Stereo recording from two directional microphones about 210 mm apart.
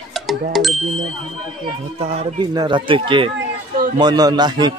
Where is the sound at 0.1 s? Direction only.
Centre (ahead or behind).